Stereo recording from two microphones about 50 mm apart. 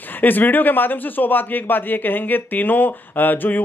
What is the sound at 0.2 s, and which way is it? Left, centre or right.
A man's voice, left.